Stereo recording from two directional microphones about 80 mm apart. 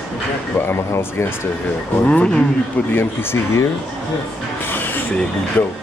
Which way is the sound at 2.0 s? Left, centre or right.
Centre.